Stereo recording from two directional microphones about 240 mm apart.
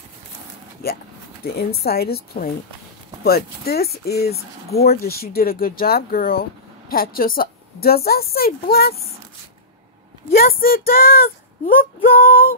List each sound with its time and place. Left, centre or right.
1.4 s speech: left
10.3 s speech: left